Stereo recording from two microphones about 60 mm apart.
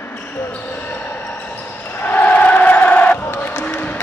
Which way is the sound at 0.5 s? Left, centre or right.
Left.